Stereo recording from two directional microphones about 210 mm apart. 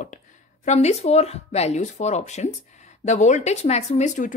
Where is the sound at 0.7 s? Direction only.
35° left (ahead or behind).